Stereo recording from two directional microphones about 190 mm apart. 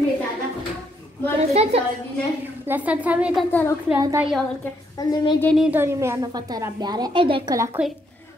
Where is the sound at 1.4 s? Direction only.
35° right (ahead or behind).